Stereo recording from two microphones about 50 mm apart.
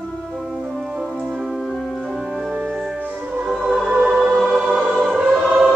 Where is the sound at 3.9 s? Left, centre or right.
Right.